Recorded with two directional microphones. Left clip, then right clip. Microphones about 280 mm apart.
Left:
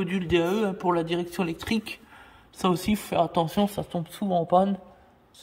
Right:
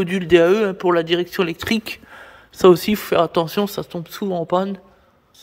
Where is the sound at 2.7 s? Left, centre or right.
Centre.